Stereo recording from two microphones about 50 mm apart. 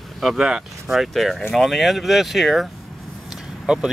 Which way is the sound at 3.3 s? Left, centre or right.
Centre.